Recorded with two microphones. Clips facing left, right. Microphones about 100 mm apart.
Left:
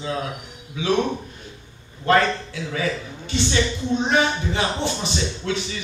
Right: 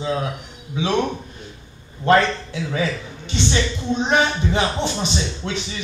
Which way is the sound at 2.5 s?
20° right (ahead or behind).